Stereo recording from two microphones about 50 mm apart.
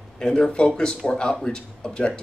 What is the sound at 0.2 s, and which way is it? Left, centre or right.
Speech, centre.